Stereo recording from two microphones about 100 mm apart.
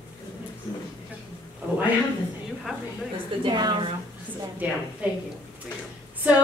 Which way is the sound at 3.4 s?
50° right (ahead or behind).